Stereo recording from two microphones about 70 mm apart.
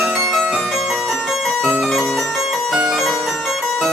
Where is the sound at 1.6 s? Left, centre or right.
Right.